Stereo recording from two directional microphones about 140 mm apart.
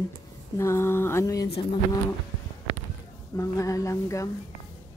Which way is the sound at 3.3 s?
25° left (ahead or behind).